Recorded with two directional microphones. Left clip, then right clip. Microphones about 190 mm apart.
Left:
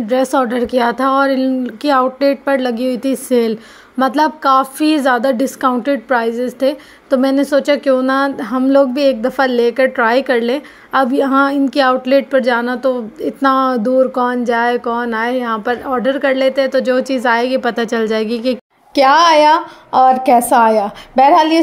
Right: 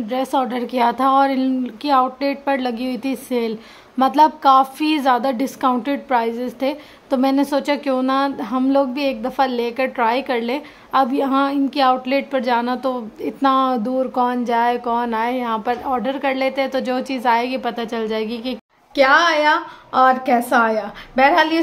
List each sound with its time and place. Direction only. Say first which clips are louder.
0.1 s a woman's voice: left 6 dB; 20° left (ahead or behind)
4.0 s a woman's voice: even; 15° left (ahead or behind)